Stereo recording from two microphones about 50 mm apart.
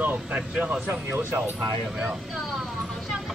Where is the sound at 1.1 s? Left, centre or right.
Right.